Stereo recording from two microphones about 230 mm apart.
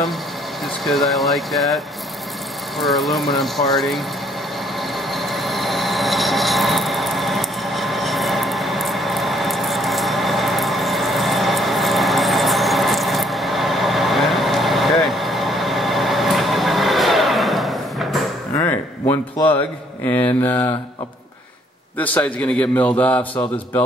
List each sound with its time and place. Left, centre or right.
0.8 s speech: centre
2.8 s speech: centre
5.1 s vehicle: centre
18.6 s a sound: centre
20.1 s a man's voice: centre
21.9 s a man's voice: centre